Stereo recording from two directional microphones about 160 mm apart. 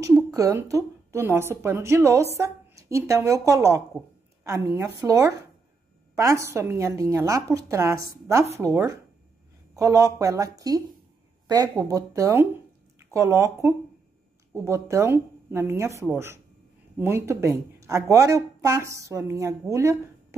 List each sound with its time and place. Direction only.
0.3 s a woman's voice: 20° right (ahead or behind)
9.8 s a woman's voice: 20° right (ahead or behind)